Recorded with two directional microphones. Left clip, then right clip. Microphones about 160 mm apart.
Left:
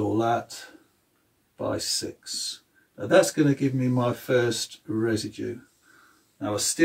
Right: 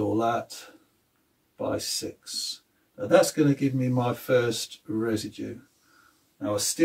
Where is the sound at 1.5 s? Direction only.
Centre (ahead or behind).